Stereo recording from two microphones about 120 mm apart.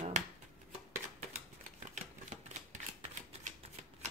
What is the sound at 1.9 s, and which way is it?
Typewriter, 90° right.